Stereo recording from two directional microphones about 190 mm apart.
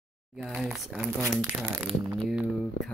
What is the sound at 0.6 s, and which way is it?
Speech, centre (ahead or behind).